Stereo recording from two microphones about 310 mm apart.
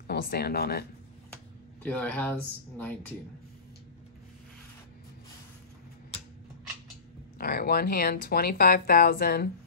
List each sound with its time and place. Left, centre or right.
0.0 s speech: left
1.3 s a sound: centre
2.8 s speech: centre
7.3 s speech: left